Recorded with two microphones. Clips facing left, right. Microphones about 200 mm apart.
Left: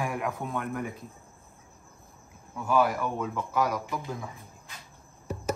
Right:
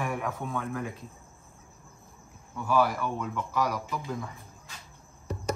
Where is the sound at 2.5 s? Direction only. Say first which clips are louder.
Left 1 dB; centre (ahead or behind).